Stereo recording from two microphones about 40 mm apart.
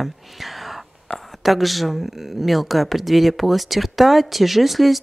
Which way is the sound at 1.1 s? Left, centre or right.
Centre.